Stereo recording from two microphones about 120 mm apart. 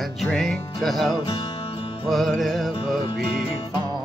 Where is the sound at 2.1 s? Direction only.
Centre (ahead or behind).